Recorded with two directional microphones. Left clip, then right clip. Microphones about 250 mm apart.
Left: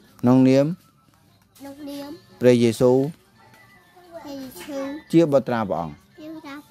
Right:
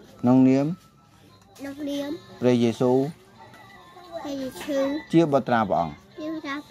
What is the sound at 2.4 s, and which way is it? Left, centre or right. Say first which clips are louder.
Speech: left 5 dB; left.